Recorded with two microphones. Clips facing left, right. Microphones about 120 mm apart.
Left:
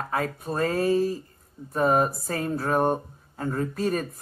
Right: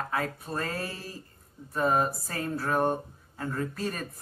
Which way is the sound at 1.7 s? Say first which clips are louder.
Left 4 dB; 25° left (ahead or behind).